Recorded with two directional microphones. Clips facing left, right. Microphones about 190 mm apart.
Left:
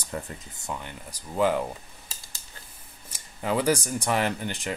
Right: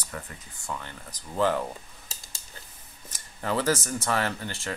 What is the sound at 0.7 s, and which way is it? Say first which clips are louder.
Speech: left 1 dB; 15° left (ahead or behind).